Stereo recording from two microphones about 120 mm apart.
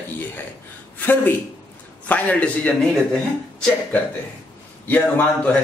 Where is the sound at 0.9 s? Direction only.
15° left (ahead or behind).